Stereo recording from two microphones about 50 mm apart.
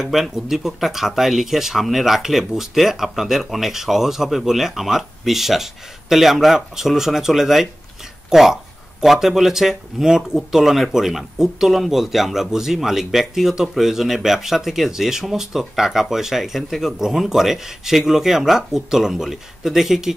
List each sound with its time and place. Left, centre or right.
0.0 s speech: centre